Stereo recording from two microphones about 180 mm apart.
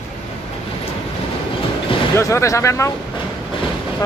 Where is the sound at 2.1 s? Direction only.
15° left (ahead or behind).